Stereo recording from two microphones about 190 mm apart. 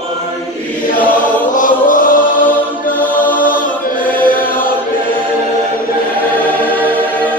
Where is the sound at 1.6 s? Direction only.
45° left (ahead or behind).